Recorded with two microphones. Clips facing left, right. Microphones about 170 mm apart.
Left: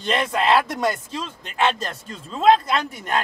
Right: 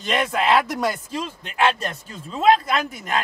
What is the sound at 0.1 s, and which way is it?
Speech, 5° right (ahead or behind).